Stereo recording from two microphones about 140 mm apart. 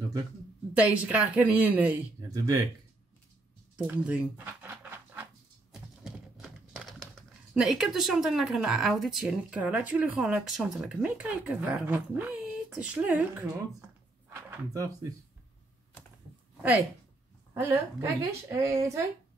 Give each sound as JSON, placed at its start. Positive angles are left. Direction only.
{"t": 0.7, "sound": "a woman's voice", "side_deg": -10}
{"t": 2.1, "sound": "speech", "side_deg": -25}
{"t": 3.7, "sound": "speech", "side_deg": -10}
{"t": 5.7, "sound": "a sound", "side_deg": -5}
{"t": 14.3, "sound": "speech", "side_deg": -25}
{"t": 17.6, "sound": "speech", "side_deg": -20}